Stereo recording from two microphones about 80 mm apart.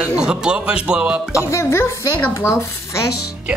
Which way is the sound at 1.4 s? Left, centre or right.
Left.